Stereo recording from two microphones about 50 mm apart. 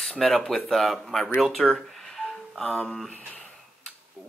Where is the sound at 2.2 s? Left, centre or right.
Centre.